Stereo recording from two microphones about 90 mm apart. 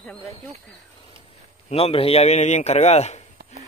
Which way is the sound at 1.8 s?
90° left.